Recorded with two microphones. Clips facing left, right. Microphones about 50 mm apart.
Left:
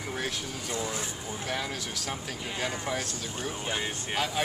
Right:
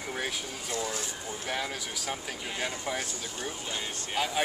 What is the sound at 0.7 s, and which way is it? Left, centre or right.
Speech, centre.